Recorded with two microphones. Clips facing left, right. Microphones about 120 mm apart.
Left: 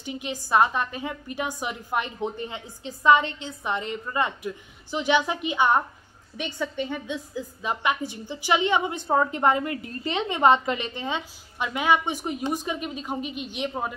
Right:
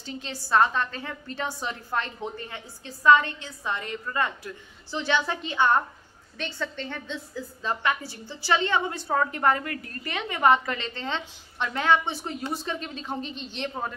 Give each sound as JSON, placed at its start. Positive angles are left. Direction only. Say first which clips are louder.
{"t": 0.0, "sound": "a woman's voice", "louder": "left 4 dB", "side_deg": 15}